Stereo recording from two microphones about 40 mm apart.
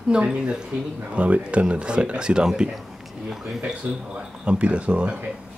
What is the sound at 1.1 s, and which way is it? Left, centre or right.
Speech, right.